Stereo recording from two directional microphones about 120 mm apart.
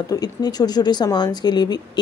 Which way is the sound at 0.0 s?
35° left (ahead or behind).